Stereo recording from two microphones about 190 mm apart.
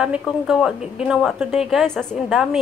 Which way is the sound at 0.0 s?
5° right (ahead or behind).